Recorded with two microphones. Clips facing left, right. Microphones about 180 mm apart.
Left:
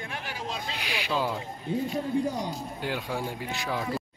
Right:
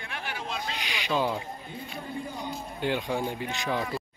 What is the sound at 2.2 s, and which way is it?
Speech, 85° left.